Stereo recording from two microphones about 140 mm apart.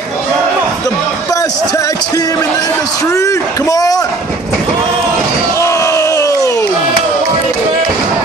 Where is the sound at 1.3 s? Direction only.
25° left (ahead or behind).